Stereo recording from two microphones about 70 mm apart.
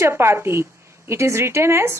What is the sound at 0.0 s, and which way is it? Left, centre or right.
Speech, right.